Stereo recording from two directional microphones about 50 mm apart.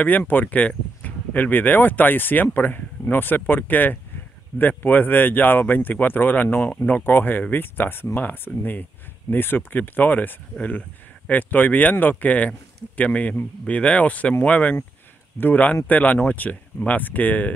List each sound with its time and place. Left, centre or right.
0.3 s speech: left